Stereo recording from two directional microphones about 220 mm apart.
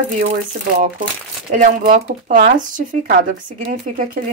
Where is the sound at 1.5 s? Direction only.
35° right (ahead or behind).